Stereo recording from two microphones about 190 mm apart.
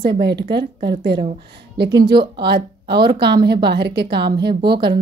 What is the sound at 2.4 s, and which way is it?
Speech, 60° right (ahead or behind).